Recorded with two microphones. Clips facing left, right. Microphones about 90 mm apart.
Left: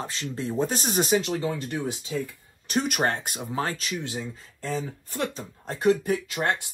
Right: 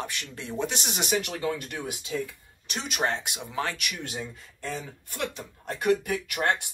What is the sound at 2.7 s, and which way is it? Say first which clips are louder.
Speech: left 4 dB; 55° left (ahead or behind).